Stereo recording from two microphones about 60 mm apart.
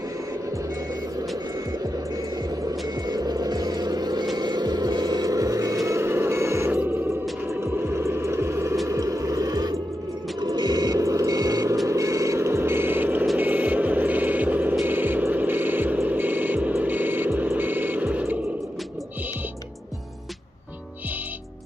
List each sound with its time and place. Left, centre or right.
3.2 s vehicle: right
5.2 s music: right
5.9 s vehicle: right
7.6 s music: right
8.8 s music: right
10.4 s a sound: right
11.9 s music: right
12.4 s music: right
13.4 s vehicle: right
14.9 s music: right